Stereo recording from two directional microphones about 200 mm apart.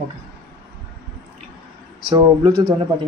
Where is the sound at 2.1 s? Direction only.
20° right (ahead or behind).